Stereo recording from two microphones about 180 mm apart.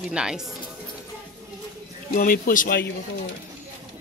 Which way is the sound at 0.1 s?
5° right (ahead or behind).